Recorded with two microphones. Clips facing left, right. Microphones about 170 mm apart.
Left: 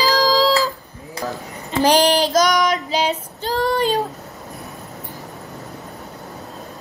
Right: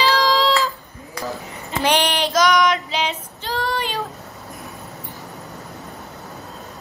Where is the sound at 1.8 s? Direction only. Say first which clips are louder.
Left 5 dB; 35° left (ahead or behind).